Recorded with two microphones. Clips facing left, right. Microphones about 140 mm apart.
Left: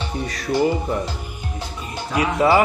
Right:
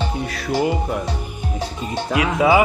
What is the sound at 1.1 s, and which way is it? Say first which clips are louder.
Music: right 4 dB; 70° right (ahead or behind).